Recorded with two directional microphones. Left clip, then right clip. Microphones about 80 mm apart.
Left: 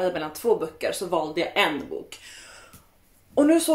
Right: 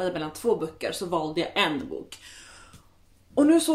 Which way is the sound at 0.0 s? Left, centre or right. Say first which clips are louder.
Left 2 dB; right.